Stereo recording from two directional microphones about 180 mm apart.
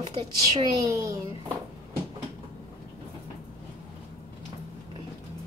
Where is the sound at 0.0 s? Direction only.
30° right (ahead or behind).